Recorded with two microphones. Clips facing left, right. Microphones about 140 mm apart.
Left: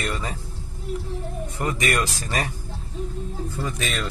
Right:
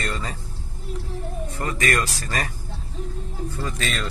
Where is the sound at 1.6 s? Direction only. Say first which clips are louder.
Even; 20° left (ahead or behind).